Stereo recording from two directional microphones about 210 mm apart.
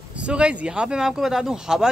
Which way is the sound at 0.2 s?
5° right (ahead or behind).